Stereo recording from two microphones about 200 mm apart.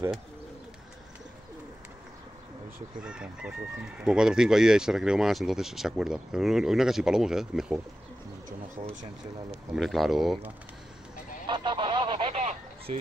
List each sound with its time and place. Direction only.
3.0 s speech: 5° right (ahead or behind)
9.8 s speech: centre (ahead or behind)
11.4 s honk: 25° right (ahead or behind)